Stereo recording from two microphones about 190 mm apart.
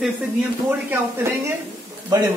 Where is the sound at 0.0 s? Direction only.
10° right (ahead or behind).